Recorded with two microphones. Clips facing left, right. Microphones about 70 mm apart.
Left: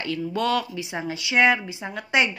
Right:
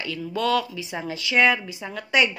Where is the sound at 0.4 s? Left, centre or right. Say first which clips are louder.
Right 2 dB; left.